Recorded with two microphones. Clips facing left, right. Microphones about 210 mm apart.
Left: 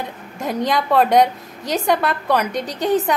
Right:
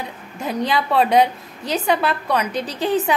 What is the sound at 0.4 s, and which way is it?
A woman's voice, centre (ahead or behind).